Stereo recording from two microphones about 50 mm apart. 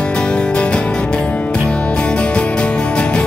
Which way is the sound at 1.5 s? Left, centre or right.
Centre.